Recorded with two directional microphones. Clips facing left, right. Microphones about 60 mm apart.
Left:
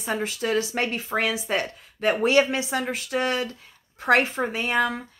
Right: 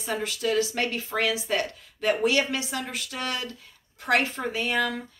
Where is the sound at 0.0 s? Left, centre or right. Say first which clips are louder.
Left 1 dB; left.